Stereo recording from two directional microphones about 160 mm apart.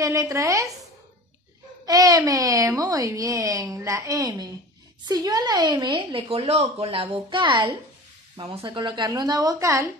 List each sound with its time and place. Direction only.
0.0 s speech: 20° right (ahead or behind)
1.9 s speech: 20° right (ahead or behind)
5.9 s a woman's voice: 35° right (ahead or behind); by 9.8 s 20° right (ahead or behind)